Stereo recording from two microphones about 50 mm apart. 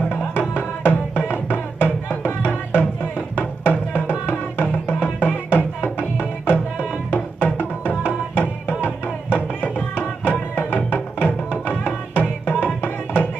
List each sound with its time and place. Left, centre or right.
0.1 s music: left
3.6 s music: left
8.0 s music: left